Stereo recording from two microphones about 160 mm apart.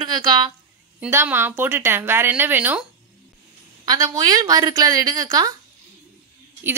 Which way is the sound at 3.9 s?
25° right (ahead or behind).